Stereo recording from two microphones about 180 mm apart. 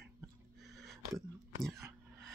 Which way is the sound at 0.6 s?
Centre (ahead or behind).